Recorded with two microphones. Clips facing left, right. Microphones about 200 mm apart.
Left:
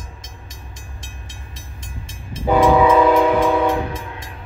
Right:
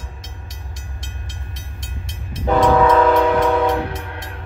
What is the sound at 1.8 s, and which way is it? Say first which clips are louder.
Train: right 1 dB; 70° right (ahead or behind).